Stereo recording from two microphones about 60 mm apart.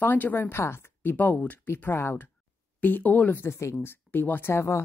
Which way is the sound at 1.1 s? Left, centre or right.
Left.